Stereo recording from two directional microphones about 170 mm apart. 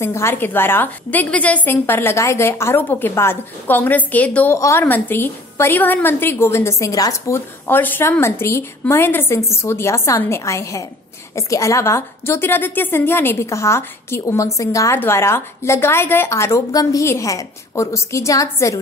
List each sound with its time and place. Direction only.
0.0 s a woman's voice: 15° left (ahead or behind)